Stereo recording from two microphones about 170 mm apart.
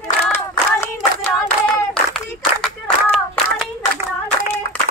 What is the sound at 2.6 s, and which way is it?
Clapping, 5° left (ahead or behind).